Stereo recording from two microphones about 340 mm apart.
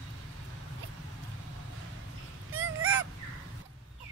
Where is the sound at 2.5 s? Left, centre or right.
Right.